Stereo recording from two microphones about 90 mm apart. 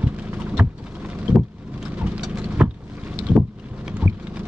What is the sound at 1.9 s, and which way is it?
Clip-clop, 15° right (ahead or behind).